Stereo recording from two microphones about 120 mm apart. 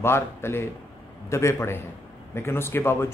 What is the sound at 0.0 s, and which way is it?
Speech, 20° left (ahead or behind).